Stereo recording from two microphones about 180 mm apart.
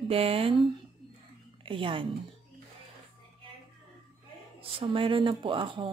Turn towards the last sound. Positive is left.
turn(degrees=-30)  # may be behind; listen again after turning